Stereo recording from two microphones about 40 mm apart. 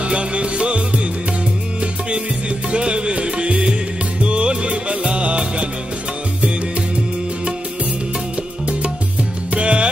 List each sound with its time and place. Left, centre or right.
0.0 s music: right
2.7 s music: right
9.5 s music: right